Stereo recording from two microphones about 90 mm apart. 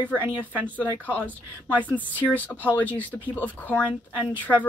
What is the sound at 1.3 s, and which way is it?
Speech, 20° right (ahead or behind).